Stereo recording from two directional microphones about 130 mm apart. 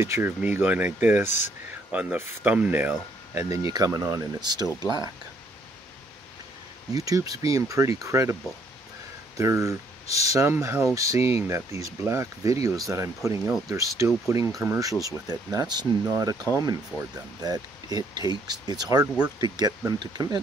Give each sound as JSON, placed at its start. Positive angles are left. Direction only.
{"t": 0.0, "sound": "speech", "side_deg": -20}
{"t": 6.9, "sound": "speech", "side_deg": -25}
{"t": 9.4, "sound": "speech", "side_deg": -25}
{"t": 11.1, "sound": "speech", "side_deg": 50}
{"t": 11.4, "sound": "speech", "side_deg": -20}
{"t": 16.9, "sound": "speech", "side_deg": 30}
{"t": 17.4, "sound": "speech", "side_deg": -30}